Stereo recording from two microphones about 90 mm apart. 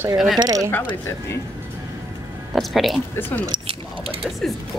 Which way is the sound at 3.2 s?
25° left (ahead or behind).